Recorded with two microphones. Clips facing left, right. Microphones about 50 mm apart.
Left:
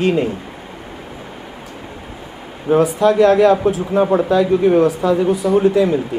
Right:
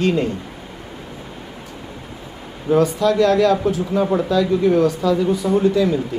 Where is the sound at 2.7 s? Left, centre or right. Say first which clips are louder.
Left 3 dB; left.